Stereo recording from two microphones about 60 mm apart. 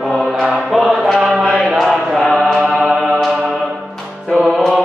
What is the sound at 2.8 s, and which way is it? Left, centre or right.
Music, centre.